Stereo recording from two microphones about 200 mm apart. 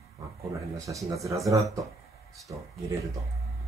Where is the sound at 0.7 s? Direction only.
15° right (ahead or behind).